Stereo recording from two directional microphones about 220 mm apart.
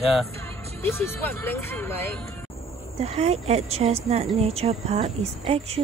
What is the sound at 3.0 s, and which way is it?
Speech, 30° right (ahead or behind).